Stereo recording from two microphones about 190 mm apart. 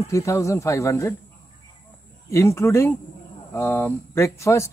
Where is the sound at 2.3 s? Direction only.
15° left (ahead or behind).